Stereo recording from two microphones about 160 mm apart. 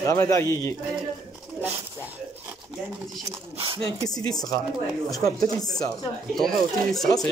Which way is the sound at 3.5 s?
35° right (ahead or behind).